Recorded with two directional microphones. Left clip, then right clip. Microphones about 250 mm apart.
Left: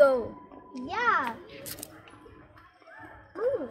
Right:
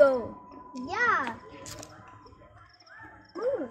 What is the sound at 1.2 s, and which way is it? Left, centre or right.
Speech, centre.